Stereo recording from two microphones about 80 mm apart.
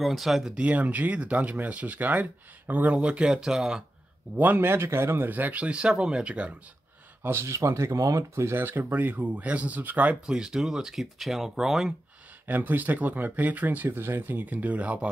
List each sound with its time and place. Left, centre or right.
0.0 s speech: centre
4.4 s speech: right
7.2 s speech: right
8.5 s speech: right; by 11.9 s centre
12.4 s speech: right